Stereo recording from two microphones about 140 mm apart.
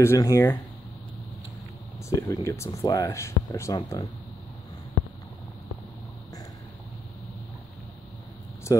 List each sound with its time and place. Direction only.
0.0 s speech: 20° left (ahead or behind)
2.0 s speech: 20° left (ahead or behind)